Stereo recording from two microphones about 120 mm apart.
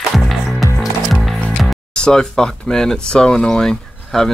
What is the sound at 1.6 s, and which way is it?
Speech, 5° left (ahead or behind).